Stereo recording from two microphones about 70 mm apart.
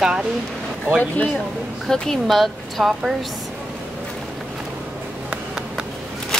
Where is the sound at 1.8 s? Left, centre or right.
Centre.